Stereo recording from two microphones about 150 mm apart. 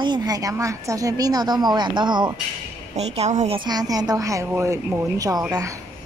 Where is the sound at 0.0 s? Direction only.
25° right (ahead or behind).